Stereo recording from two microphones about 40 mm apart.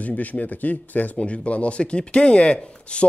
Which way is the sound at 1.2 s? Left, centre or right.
Left.